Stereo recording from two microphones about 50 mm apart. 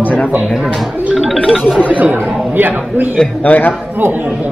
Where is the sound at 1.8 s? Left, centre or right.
Right.